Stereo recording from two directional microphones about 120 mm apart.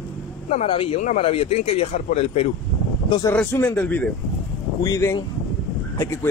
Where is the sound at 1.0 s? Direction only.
90° left.